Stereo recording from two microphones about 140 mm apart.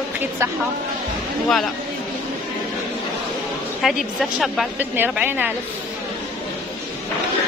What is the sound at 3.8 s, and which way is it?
Speech, centre (ahead or behind).